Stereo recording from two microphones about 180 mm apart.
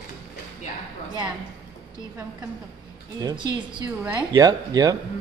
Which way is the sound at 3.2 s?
25° right (ahead or behind).